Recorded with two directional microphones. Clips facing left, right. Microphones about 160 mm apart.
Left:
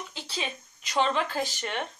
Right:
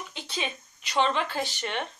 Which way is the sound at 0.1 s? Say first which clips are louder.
Right 3 dB; 35° left (ahead or behind).